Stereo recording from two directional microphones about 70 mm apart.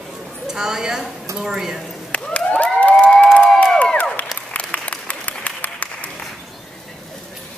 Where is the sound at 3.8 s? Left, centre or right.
Left.